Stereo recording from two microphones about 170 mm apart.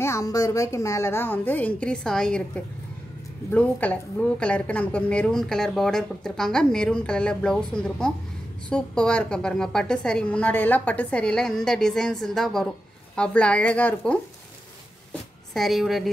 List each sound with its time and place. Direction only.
0.0 s a woman's voice: 20° left (ahead or behind)
15.5 s a woman's voice: centre (ahead or behind)